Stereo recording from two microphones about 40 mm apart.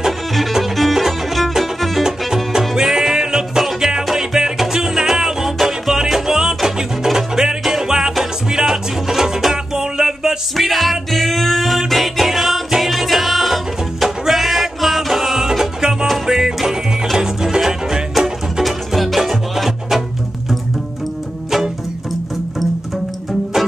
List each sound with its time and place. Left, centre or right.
0.3 s music: centre
2.0 s music: centre
10.5 s music: centre
18.1 s music: centre